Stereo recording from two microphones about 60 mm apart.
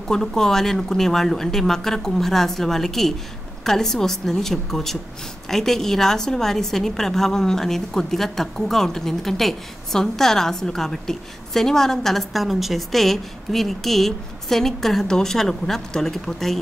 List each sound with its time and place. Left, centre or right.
0.1 s a woman's voice: centre